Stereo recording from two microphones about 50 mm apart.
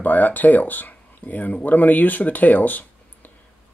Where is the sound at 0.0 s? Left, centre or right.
Left.